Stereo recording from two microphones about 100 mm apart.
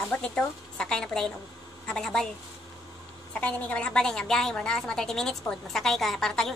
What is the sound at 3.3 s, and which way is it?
A woman's voice, 10° left (ahead or behind).